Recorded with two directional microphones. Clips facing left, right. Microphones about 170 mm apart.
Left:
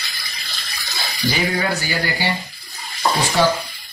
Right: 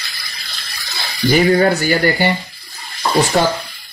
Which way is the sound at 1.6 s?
50° right (ahead or behind).